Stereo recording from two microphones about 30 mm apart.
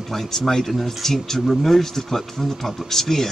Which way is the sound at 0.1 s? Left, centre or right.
Centre.